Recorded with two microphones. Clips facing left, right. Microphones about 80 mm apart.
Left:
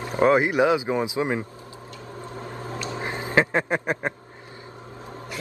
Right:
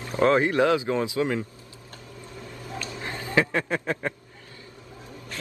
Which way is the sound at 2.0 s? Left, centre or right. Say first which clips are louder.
Left 6 dB; left.